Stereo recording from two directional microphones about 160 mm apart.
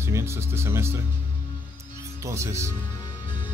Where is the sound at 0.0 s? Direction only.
15° right (ahead or behind).